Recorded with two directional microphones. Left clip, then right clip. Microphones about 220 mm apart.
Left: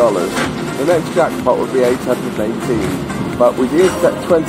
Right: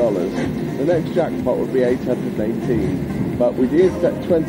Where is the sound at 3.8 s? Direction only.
45° left (ahead or behind).